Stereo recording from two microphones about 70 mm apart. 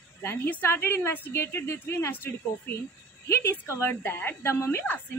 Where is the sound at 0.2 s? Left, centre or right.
Left.